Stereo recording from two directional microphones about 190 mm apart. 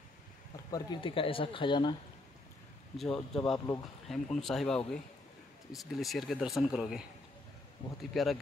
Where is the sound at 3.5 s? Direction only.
15° left (ahead or behind).